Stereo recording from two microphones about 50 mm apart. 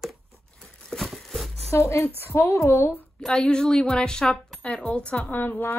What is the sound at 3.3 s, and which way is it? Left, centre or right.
A woman's voice, centre.